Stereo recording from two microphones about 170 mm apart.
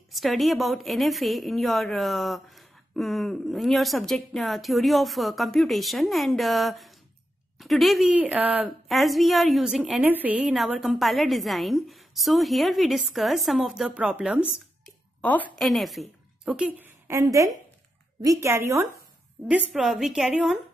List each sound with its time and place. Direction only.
0.1 s a woman's voice: centre (ahead or behind)
15.2 s a woman's voice: 10° left (ahead or behind); by 18.9 s 15° right (ahead or behind)
19.7 s a woman's voice: centre (ahead or behind)